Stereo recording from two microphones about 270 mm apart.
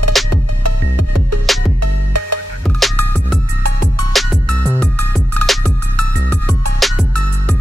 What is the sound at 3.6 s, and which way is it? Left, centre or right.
Music, right.